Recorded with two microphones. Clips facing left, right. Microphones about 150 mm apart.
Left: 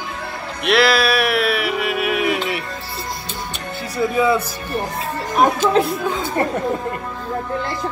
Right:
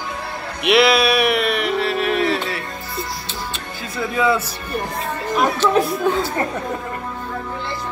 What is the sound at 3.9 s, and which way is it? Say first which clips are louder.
Speech: left 2 dB; 15° left (ahead or behind).